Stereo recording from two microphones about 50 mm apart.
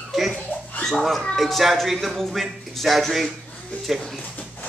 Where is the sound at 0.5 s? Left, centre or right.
Left.